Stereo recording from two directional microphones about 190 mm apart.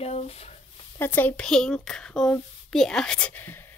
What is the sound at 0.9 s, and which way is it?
Speech, 10° left (ahead or behind).